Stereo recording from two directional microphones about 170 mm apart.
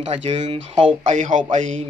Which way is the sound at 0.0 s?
40° right (ahead or behind).